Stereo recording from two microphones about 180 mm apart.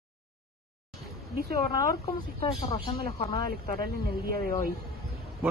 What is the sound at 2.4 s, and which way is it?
Speech, 30° left (ahead or behind).